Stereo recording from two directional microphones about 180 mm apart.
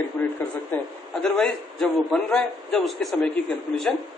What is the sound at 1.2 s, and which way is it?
Speech, 5° left (ahead or behind).